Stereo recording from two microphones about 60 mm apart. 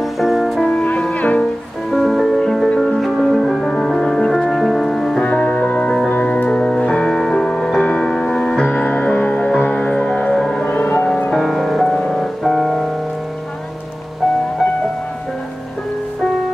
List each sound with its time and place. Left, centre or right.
0.0 s music: centre
0.6 s music: centre
1.1 s music: left
1.9 s music: centre
2.7 s music: centre
3.2 s music: centre
5.2 s music: centre
8.6 s music: left
10.7 s music: left
11.1 s music: centre
11.5 s music: centre